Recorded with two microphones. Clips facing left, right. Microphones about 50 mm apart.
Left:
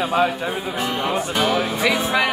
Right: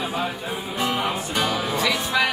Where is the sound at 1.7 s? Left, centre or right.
Left.